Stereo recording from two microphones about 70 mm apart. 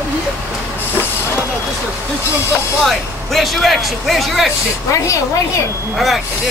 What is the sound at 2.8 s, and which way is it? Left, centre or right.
Speech, centre.